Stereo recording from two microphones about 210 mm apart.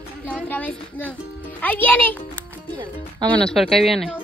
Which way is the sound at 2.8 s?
25° right (ahead or behind).